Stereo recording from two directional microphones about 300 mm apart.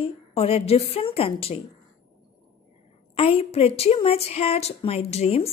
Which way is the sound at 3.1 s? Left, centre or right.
Centre.